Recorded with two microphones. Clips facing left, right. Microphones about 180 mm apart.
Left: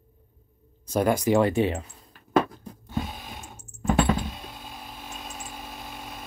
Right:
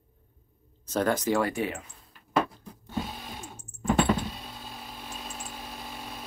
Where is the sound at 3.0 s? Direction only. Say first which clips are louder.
Left 1 dB; centre (ahead or behind).